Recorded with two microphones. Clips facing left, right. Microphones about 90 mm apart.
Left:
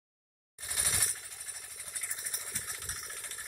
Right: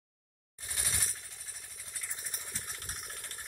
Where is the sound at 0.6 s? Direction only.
20° left (ahead or behind).